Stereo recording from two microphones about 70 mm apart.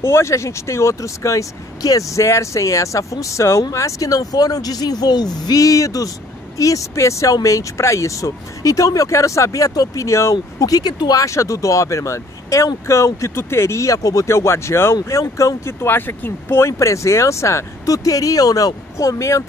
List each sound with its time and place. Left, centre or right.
0.0 s speech: left
10.3 s speech: left
11.2 s speech: left